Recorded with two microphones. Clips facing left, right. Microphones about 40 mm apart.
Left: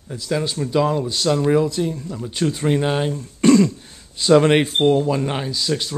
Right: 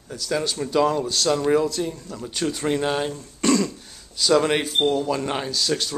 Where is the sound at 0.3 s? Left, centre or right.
Centre.